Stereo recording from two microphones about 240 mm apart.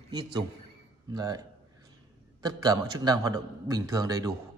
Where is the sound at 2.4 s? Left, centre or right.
Centre.